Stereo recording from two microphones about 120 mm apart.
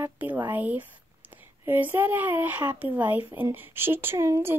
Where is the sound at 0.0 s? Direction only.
15° right (ahead or behind).